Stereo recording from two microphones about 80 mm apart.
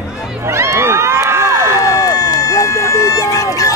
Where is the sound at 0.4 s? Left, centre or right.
Right.